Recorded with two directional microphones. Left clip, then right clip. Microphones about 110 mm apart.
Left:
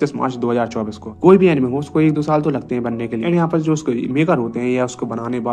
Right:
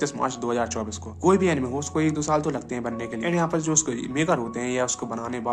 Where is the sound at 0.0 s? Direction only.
35° left (ahead or behind).